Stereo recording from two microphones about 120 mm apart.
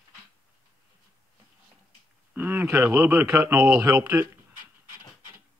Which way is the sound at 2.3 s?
15° right (ahead or behind).